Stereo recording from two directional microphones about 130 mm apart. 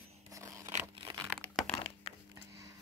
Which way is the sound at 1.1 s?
40° right (ahead or behind).